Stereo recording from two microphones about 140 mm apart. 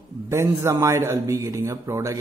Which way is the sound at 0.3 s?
20° right (ahead or behind).